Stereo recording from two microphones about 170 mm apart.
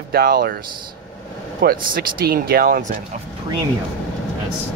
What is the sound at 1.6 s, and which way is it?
Speech, 60° right (ahead or behind).